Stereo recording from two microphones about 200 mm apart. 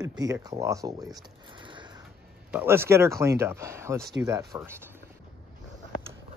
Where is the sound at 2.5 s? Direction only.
10° right (ahead or behind).